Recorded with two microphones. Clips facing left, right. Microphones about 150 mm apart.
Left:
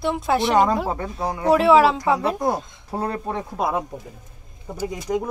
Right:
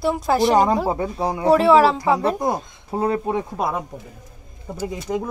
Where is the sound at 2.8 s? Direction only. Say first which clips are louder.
Right 5 dB; 20° right (ahead or behind).